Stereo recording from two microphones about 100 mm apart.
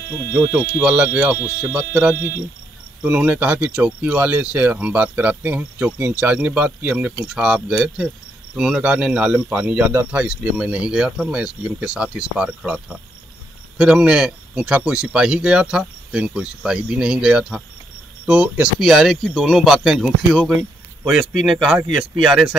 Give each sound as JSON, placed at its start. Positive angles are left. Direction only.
{"t": 0.7, "sound": "speech", "side_deg": -15}
{"t": 3.0, "sound": "speech", "side_deg": -10}